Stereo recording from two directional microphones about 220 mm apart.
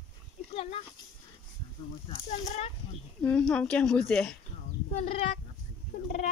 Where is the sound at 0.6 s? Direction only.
25° left (ahead or behind).